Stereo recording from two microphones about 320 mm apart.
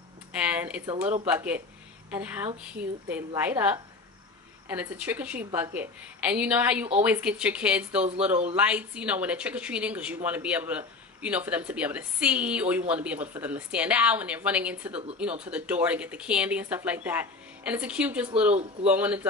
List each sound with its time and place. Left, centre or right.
0.5 s a woman's voice: centre
18.5 s speech: centre
18.9 s a woman's voice: centre